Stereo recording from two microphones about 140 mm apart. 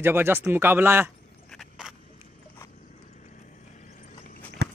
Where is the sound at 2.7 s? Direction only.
75° left (ahead or behind).